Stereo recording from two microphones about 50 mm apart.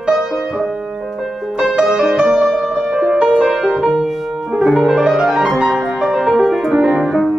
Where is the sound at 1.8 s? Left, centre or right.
Centre.